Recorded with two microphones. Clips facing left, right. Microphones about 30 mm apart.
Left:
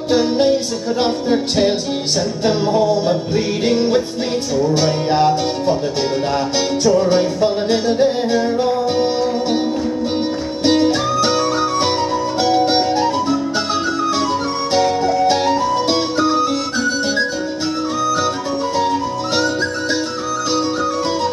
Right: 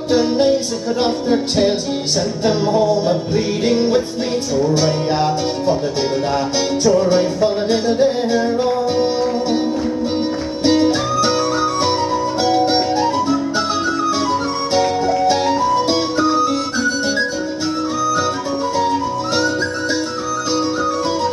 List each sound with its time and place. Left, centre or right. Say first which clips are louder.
0.1 s music: even; left
7.1 s music: even; left
10.6 s music: even; left
11.2 s flute: even; left
12.1 s music: even; left
12.6 s music: left 1 dB; left
13.0 s music: even; left
13.7 s music: even; left
14.8 s music: left 1 dB; centre
15.7 s music: right 1 dB; left
16.7 s music: even; left
19.3 s music: left 1 dB; left